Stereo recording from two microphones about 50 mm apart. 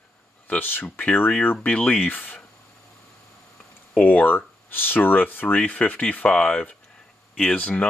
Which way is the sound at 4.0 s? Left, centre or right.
Left.